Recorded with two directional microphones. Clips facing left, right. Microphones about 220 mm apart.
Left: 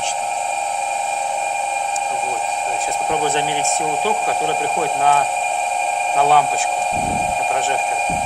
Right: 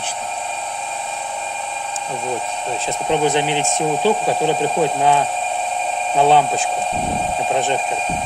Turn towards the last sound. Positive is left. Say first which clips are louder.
# right 2 dB
turn(degrees=-20)  # may be behind; listen again after turning